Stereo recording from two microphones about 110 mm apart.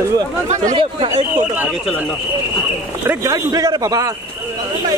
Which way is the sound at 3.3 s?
35° right (ahead or behind).